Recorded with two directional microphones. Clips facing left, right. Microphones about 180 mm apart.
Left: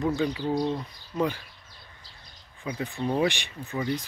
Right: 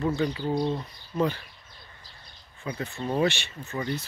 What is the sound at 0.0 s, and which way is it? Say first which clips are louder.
Speech: even; 15° left (ahead or behind).